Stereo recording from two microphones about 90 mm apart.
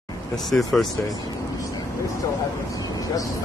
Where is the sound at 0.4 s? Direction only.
Centre (ahead or behind).